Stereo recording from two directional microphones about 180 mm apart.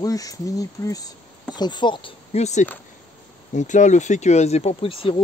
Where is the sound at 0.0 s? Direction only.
20° left (ahead or behind).